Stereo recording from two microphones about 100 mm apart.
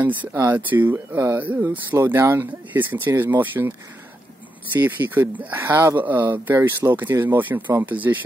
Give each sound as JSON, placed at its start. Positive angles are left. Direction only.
{"t": 0.5, "sound": "speech", "side_deg": -20}
{"t": 4.7, "sound": "speech", "side_deg": -20}